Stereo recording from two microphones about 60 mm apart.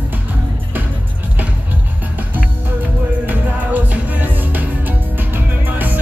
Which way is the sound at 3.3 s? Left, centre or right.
Right.